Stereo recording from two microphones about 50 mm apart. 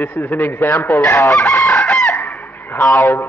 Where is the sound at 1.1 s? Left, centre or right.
Left.